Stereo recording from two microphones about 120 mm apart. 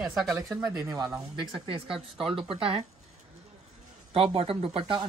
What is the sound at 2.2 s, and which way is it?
Speech, 50° right (ahead or behind).